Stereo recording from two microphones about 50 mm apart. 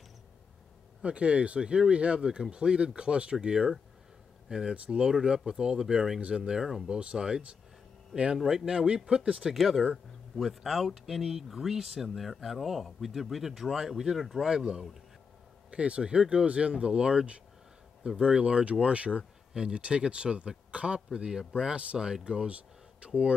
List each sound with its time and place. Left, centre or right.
1.0 s speech: right
6.6 s speech: centre
7.0 s speech: centre
9.5 s speech: centre
15.7 s speech: right